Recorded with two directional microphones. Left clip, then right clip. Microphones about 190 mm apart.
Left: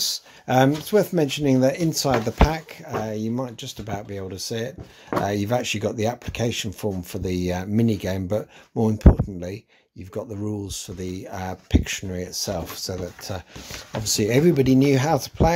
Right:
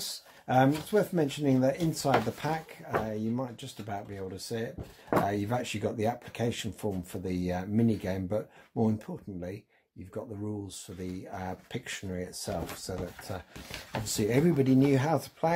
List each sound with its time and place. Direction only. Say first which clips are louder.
0.0 s speech: left 13 dB; 35° left (ahead or behind)